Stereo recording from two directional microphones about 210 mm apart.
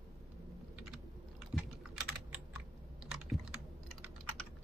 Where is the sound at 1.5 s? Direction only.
5° right (ahead or behind).